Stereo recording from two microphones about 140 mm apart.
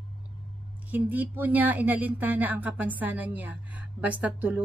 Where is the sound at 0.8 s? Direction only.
10° right (ahead or behind).